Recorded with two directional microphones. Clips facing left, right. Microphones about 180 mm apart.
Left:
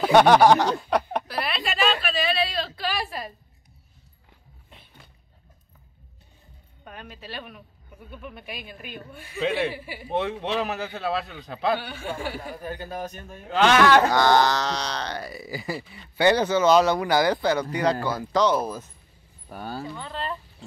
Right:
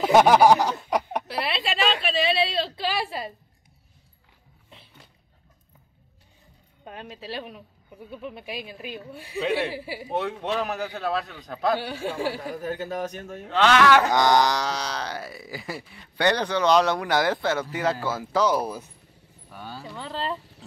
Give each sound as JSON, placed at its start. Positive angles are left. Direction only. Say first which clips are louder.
{"t": 0.0, "sound": "a sound", "louder": "even", "side_deg": -10}
{"t": 1.2, "sound": "speech", "louder": "right 1 dB", "side_deg": -25}
{"t": 6.8, "sound": "speech", "louder": "right 3 dB", "side_deg": -25}
{"t": 9.4, "sound": "speech", "louder": "even", "side_deg": 0}
{"t": 9.8, "sound": "speech", "louder": "right 4 dB", "side_deg": -30}
{"t": 10.1, "sound": "speech", "louder": "left 1 dB", "side_deg": 0}
{"t": 11.8, "sound": "speech", "louder": "right 4 dB", "side_deg": -35}
{"t": 12.5, "sound": "speech", "louder": "right 4 dB", "side_deg": -80}
{"t": 14.1, "sound": "speech", "louder": "left 1 dB", "side_deg": -15}
{"t": 19.5, "sound": "a sound", "louder": "left 5 dB", "side_deg": 55}
{"t": 20.0, "sound": "speech", "louder": "right 2 dB", "side_deg": -30}